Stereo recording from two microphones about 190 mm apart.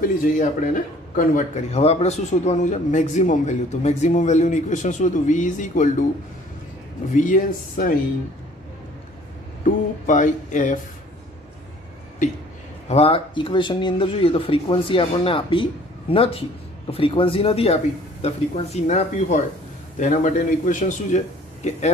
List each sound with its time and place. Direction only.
0.0 s speech: 45° left (ahead or behind)
7.2 s speech: 45° left (ahead or behind)
10.0 s speech: 40° left (ahead or behind)
12.8 s speech: 30° left (ahead or behind)